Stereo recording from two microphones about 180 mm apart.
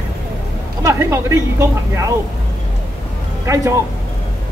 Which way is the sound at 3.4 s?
15° right (ahead or behind).